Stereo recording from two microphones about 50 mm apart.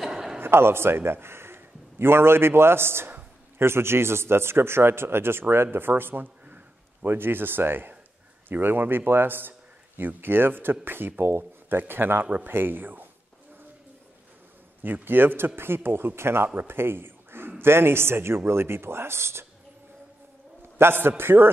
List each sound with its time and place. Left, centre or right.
0.0 s a sound: centre
0.4 s a man's voice: right
6.4 s a sound: right
7.1 s a man's voice: right
14.8 s a man's voice: right
20.7 s a man's voice: right